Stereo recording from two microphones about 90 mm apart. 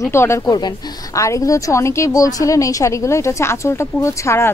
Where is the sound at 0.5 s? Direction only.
50° left (ahead or behind).